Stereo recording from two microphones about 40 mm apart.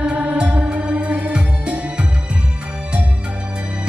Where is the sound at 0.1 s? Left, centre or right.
Right.